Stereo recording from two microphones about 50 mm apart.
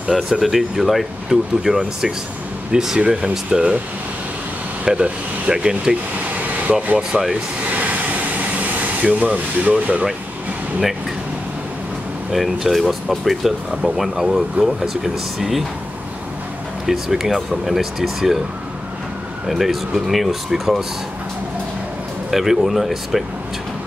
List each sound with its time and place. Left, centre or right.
0.1 s speech: centre
4.8 s speech: centre
6.1 s air conditioning: right
7.0 s speech: centre
7.7 s air conditioning: right
12.3 s speech: centre
16.8 s speech: centre
19.4 s speech: centre
22.3 s speech: centre